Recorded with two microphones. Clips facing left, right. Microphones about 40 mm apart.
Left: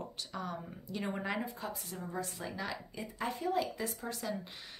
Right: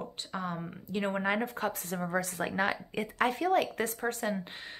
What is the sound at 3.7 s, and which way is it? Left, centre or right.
Speech, right.